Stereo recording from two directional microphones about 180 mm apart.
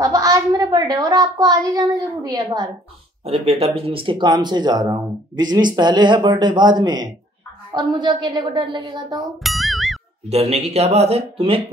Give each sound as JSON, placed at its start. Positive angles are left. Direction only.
{"t": 0.0, "sound": "speech", "side_deg": -20}
{"t": 3.3, "sound": "speech", "side_deg": -35}
{"t": 9.4, "sound": "music", "side_deg": 0}
{"t": 10.5, "sound": "speech", "side_deg": -35}